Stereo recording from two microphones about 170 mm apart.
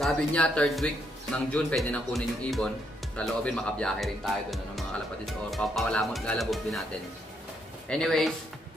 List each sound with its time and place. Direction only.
0.0 s speech: 5° left (ahead or behind)
7.9 s speech: 5° left (ahead or behind)